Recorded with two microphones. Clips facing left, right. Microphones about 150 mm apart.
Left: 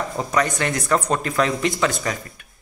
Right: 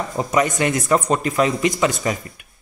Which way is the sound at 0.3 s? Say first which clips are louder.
Right 3 dB; 10° right (ahead or behind).